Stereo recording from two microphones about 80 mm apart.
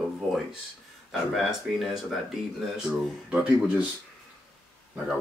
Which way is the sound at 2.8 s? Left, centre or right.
Centre.